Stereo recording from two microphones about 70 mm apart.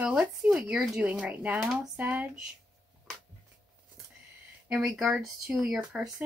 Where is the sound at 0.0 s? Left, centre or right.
Centre.